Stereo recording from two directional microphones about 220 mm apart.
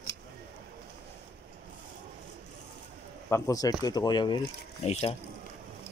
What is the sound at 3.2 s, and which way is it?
Speech, 15° left (ahead or behind).